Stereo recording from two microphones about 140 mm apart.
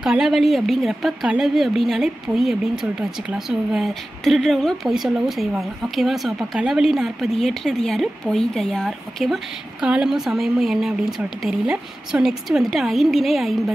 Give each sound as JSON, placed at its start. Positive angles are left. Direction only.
{"t": 0.0, "sound": "speech", "side_deg": -5}